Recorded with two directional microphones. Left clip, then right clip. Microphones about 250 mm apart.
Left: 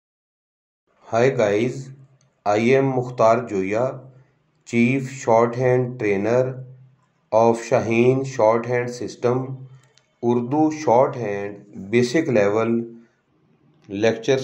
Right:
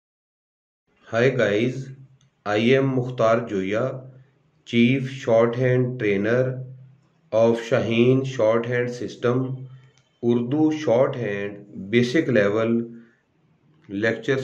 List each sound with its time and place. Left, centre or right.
1.0 s speech: centre
13.7 s speech: centre